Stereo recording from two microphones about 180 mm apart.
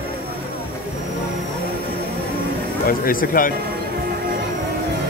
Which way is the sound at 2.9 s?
50° left (ahead or behind).